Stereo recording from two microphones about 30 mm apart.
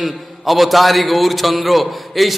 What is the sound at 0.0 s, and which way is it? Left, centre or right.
A man's voice, centre.